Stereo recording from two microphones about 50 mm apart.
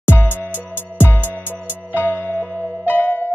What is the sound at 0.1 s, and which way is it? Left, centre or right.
Music, left.